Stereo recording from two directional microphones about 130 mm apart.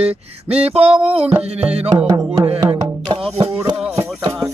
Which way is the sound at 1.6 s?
50° right (ahead or behind).